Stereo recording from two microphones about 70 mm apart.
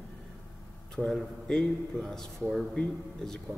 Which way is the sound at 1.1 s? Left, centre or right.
Centre.